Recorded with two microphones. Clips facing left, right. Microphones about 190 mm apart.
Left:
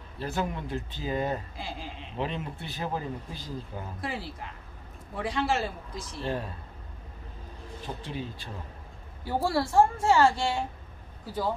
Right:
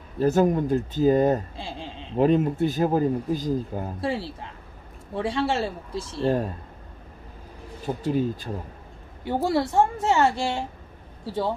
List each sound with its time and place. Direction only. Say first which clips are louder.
0.2 s speech: right 12 dB; 45° right (ahead or behind)
1.6 s a sound: right 3 dB; 30° right (ahead or behind)
2.1 s speech: right 14 dB; 45° right (ahead or behind)
4.0 s a woman's voice: right 7 dB; 30° right (ahead or behind)
6.2 s speech: right 9 dB; 45° right (ahead or behind)
7.8 s speech: right 12 dB; 45° right (ahead or behind)
9.2 s a woman's voice: right 4 dB; 20° right (ahead or behind)